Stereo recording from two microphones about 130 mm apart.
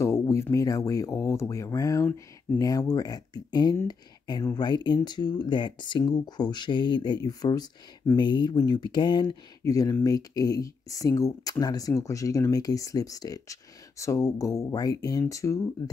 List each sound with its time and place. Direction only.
0.2 s speech: 20° left (ahead or behind); by 9.4 s 35° left (ahead or behind)
9.6 s speech: 25° left (ahead or behind)